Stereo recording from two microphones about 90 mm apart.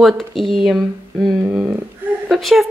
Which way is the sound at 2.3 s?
Centre (ahead or behind).